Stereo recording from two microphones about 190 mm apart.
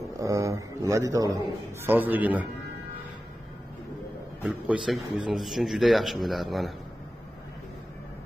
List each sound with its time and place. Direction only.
0.2 s a man's voice: 15° right (ahead or behind)
4.4 s a man's voice: 5° right (ahead or behind)